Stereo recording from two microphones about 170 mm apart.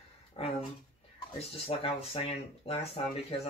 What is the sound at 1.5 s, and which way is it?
Speech, 35° left (ahead or behind).